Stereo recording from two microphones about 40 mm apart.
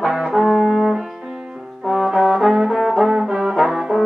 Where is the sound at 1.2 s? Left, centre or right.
Centre.